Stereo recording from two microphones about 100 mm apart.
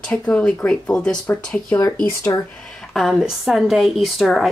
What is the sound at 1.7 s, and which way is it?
Speech, 35° left (ahead or behind).